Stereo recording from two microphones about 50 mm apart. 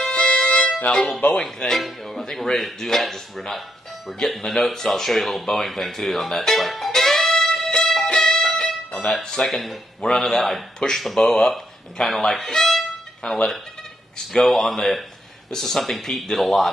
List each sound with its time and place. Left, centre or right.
0.1 s music: centre
1.1 s speech: centre
4.5 s music: centre
9.0 s speech: centre